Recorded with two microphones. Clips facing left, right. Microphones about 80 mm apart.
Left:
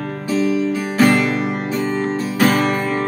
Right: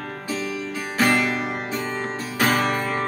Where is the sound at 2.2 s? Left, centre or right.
Centre.